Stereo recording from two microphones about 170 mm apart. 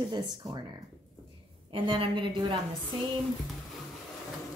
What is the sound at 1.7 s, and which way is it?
Speech, 30° right (ahead or behind).